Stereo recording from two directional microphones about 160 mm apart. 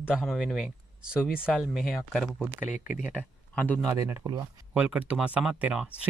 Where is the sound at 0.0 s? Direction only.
Centre (ahead or behind).